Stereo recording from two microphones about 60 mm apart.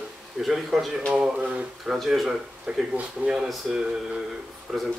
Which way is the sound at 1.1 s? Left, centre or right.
Centre.